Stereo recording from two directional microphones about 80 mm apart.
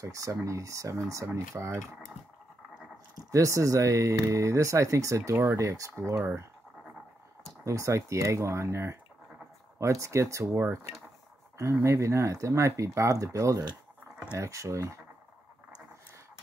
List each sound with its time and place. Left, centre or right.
0.0 s speech: right
3.3 s speech: right
7.6 s speech: right